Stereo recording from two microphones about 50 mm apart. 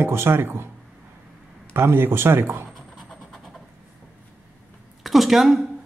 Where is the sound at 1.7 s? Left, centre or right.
Right.